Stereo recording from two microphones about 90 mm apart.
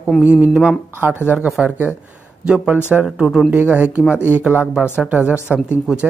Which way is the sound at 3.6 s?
20° right (ahead or behind).